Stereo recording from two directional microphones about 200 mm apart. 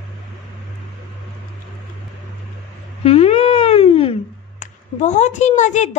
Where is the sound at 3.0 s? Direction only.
30° left (ahead or behind).